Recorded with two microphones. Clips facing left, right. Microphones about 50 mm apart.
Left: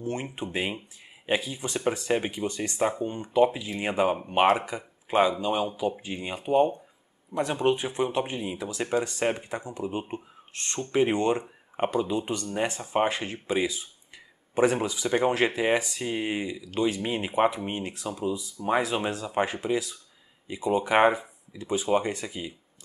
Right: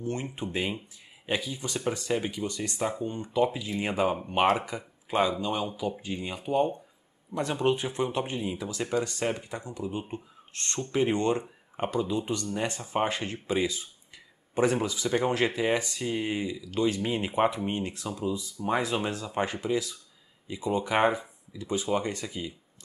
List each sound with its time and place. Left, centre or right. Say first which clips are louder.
0.0 s speech: left 1 dB; centre